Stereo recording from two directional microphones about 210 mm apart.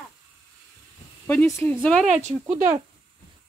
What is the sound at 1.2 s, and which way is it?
Speech, 10° left (ahead or behind).